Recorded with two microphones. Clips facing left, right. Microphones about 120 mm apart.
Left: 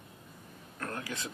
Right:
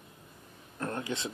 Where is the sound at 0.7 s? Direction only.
25° right (ahead or behind).